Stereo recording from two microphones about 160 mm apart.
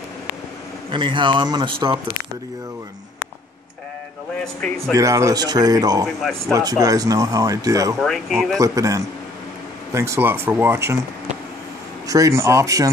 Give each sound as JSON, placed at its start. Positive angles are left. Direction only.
{"t": 0.9, "sound": "speech", "side_deg": -30}
{"t": 4.9, "sound": "speech", "side_deg": -20}
{"t": 8.0, "sound": "speech", "side_deg": 0}
{"t": 8.5, "sound": "speech", "side_deg": -20}
{"t": 12.1, "sound": "speech", "side_deg": -20}